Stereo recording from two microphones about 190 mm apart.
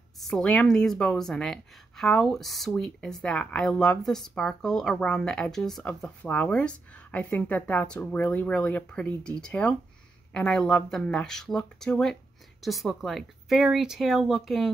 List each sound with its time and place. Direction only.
0.2 s a woman's voice: 5° left (ahead or behind)